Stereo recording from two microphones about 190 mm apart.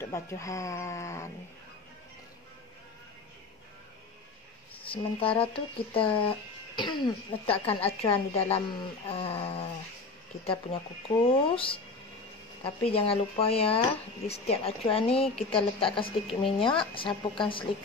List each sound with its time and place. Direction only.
0.0 s speech: 15° left (ahead or behind)
4.9 s speech: 30° left (ahead or behind)